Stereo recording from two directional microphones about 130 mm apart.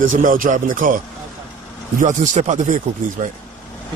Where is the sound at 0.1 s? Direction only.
90° right.